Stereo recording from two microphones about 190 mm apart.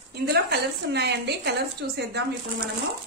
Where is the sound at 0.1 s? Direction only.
60° right (ahead or behind).